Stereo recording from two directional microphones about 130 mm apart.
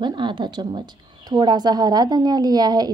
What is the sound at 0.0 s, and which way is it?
A woman's voice, 35° right (ahead or behind).